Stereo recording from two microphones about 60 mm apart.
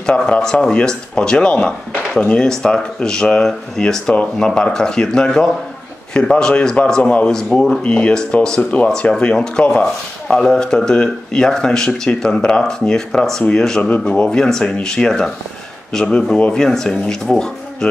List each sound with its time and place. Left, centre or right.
0.0 s speech: centre
7.0 s speech: left
7.2 s speech: centre
7.8 s speech: centre